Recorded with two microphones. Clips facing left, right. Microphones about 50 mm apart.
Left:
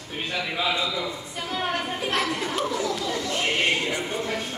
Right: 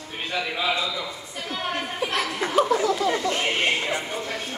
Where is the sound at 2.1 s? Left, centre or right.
Centre.